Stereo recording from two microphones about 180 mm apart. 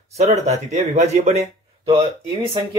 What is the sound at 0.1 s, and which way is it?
Speech, 40° right (ahead or behind).